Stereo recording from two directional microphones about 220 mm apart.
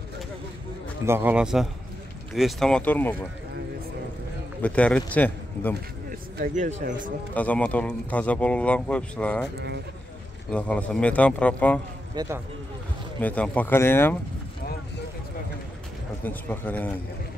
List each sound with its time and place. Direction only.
1.0 s speech: 10° right (ahead or behind); by 3.2 s 10° left (ahead or behind)
4.6 s a man's voice: 5° left (ahead or behind)
6.3 s speech: 40° right (ahead or behind)
7.3 s speech: 5° left (ahead or behind)
10.5 s speech: 5° left (ahead or behind)
12.2 s speech: 20° right (ahead or behind)
13.2 s a man's voice: 5° left (ahead or behind)
16.3 s a man's voice: 10° left (ahead or behind)